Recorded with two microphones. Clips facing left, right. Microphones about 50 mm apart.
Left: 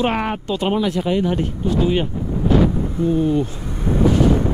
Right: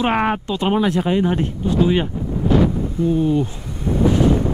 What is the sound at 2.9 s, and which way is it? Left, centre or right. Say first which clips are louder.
Speech: even; left.